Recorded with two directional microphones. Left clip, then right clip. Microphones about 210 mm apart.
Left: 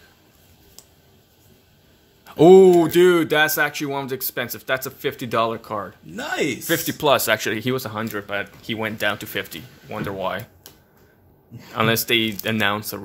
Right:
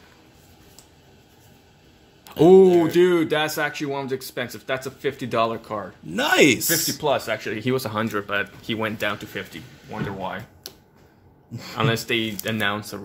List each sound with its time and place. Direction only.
2.2 s speech: 25° left (ahead or behind)
6.1 s speech: 40° right (ahead or behind)
6.7 s speech: 50° left (ahead or behind)
7.7 s speech: 5° left (ahead or behind); by 9.2 s 20° left (ahead or behind)
9.2 s speech: 45° left (ahead or behind)
11.7 s speech: 30° left (ahead or behind)